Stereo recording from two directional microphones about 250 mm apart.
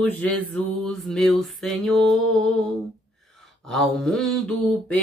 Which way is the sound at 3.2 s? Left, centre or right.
Centre.